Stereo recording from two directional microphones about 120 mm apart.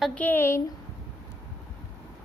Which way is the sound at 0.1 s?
15° left (ahead or behind).